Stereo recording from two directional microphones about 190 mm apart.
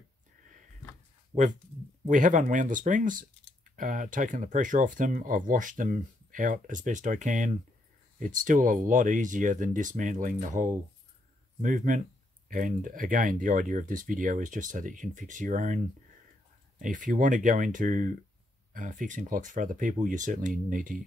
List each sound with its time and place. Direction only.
2.0 s speech: 45° right (ahead or behind)